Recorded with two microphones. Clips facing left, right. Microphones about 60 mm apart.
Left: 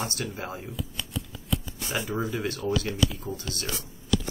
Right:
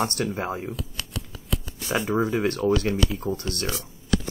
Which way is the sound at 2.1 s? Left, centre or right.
Right.